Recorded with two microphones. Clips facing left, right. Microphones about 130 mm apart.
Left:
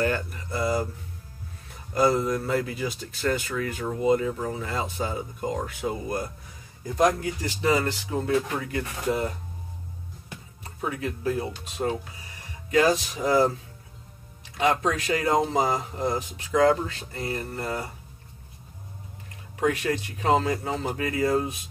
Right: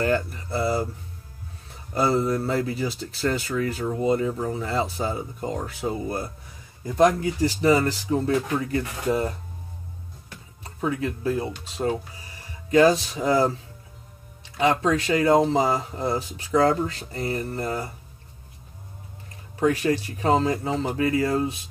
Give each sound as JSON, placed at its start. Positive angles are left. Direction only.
{"t": 0.0, "sound": "speech", "side_deg": -35}
{"t": 2.0, "sound": "speech", "side_deg": -30}
{"t": 11.3, "sound": "speech", "side_deg": -30}
{"t": 19.5, "sound": "speech", "side_deg": -30}